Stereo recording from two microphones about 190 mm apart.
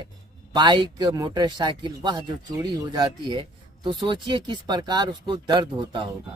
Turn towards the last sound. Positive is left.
turn(degrees=-25)  # may be behind; listen again after turning